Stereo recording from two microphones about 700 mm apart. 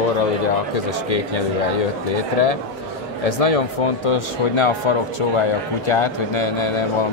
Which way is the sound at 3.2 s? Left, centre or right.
Left.